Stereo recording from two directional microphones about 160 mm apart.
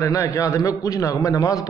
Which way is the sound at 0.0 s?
20° left (ahead or behind).